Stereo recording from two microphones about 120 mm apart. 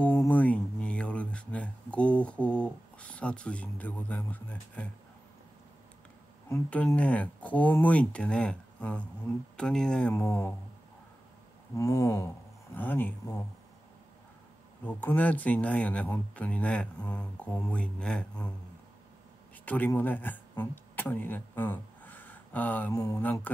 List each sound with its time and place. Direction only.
0.0 s speech: 15° left (ahead or behind)
7.0 s speech: 10° left (ahead or behind)
10.1 s a sound: 20° left (ahead or behind)
11.7 s a sound: 25° left (ahead or behind)
12.7 s speech: 15° left (ahead or behind)
14.9 s speech: 15° left (ahead or behind)
19.6 s speech: 15° left (ahead or behind)